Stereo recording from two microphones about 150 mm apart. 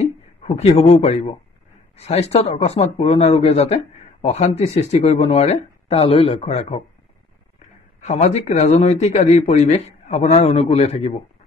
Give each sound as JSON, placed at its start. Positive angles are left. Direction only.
{"t": 0.0, "sound": "speech", "side_deg": 45}
{"t": 8.0, "sound": "speech", "side_deg": 45}